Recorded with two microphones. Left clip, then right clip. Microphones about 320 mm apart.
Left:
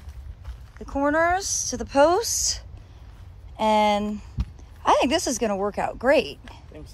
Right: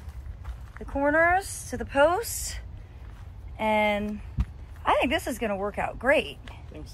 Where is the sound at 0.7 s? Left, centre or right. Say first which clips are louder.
Left 1 dB; centre.